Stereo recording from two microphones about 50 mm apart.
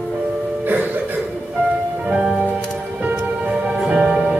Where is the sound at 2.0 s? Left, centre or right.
Right.